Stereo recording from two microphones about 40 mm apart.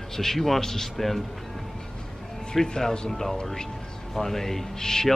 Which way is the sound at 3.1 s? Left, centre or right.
Centre.